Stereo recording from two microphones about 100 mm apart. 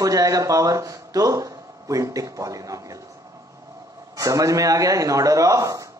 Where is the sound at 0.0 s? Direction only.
35° right (ahead or behind).